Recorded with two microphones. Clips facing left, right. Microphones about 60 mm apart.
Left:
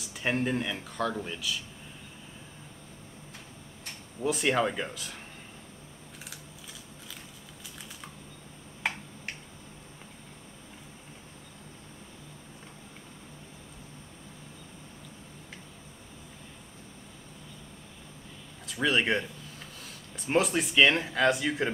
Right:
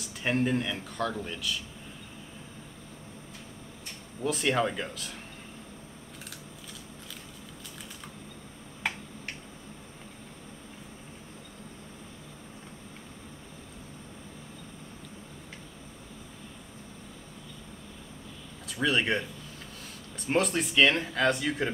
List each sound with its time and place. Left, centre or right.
0.0 s speech: centre
4.2 s speech: centre
18.7 s speech: centre